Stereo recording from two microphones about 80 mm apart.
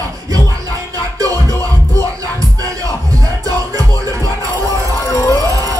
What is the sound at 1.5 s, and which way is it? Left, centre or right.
Music, right.